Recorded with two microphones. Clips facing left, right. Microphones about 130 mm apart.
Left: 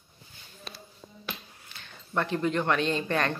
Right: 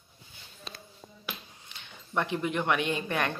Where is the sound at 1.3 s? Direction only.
20° right (ahead or behind).